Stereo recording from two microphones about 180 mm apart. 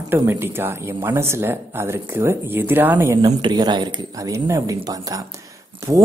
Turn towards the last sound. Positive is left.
turn(degrees=-15)  # may be behind; listen again after turning